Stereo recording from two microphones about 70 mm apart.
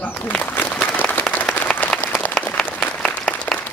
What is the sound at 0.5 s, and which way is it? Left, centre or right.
Applause, left.